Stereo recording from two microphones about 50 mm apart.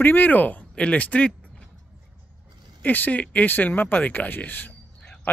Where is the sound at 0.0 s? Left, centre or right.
Left.